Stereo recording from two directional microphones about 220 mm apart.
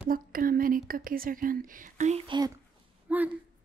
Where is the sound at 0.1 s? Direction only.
40° right (ahead or behind); by 2.5 s 20° right (ahead or behind).